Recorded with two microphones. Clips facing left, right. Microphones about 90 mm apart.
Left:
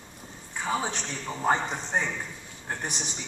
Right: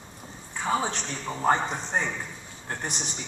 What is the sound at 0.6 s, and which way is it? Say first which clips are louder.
A man's voice: right 3 dB; 35° right (ahead or behind).